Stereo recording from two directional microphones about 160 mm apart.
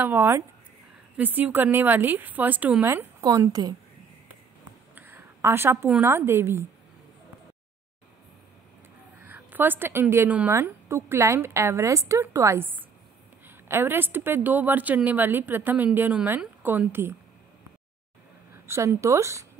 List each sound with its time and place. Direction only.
0.0 s a woman's voice: 15° right (ahead or behind)
4.9 s a woman's voice: 10° right (ahead or behind)
9.2 s a woman's voice: 10° right (ahead or behind)
18.7 s speech: 15° right (ahead or behind)